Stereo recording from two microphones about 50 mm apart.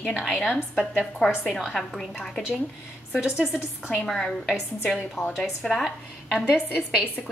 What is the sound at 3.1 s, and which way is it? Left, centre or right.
Speech, centre.